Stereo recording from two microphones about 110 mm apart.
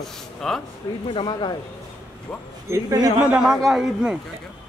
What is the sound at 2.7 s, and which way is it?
Speech, 25° right (ahead or behind).